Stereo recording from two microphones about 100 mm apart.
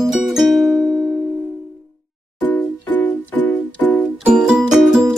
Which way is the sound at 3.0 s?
15° left (ahead or behind).